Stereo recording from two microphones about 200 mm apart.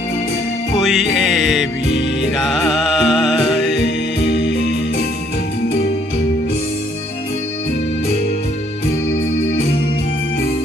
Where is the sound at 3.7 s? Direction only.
60° left (ahead or behind).